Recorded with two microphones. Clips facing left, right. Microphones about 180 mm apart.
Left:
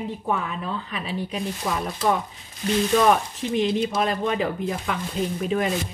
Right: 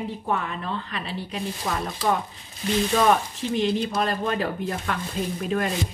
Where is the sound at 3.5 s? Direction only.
Centre (ahead or behind).